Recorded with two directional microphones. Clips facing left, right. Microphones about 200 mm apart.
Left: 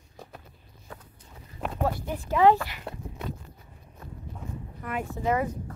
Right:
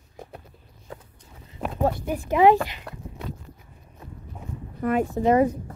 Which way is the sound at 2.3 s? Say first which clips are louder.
Right 3 dB; 15° right (ahead or behind).